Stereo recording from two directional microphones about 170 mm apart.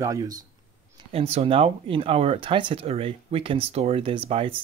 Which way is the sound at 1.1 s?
35° right (ahead or behind).